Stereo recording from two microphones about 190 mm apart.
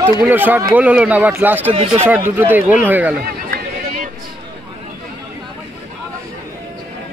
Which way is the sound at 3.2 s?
50° right (ahead or behind).